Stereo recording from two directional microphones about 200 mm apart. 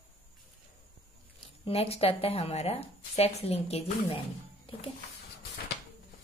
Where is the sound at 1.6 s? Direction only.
30° left (ahead or behind).